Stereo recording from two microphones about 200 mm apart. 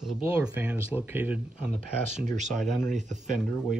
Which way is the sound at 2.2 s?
40° right (ahead or behind).